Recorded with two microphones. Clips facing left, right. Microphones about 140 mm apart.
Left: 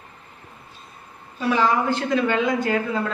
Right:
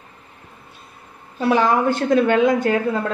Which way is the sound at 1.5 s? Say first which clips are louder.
Right 3 dB; 60° right (ahead or behind).